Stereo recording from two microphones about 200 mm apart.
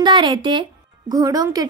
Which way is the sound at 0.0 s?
25° right (ahead or behind).